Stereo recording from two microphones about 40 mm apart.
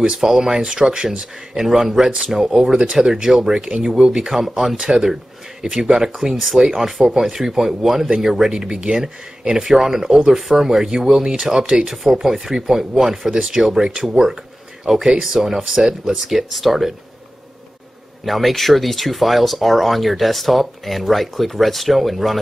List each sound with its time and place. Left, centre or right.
0.2 s speech: centre
6.3 s speech: centre
7.0 s speech: centre
8.5 s speech: right; by 16.9 s centre
18.2 s speech: centre